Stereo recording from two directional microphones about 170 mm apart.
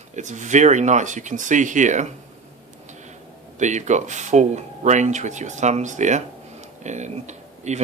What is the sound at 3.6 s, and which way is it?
Speech, 45° right (ahead or behind).